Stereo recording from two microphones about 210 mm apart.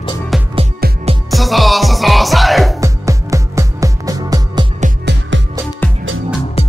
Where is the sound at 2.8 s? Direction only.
15° right (ahead or behind).